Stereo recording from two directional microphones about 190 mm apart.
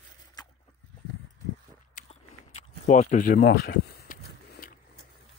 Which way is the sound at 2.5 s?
40° left (ahead or behind).